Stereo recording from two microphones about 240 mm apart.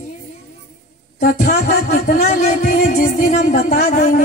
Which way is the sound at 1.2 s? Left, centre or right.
Left.